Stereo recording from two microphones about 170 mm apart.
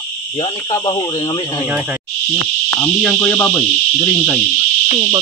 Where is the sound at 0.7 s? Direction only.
25° left (ahead or behind).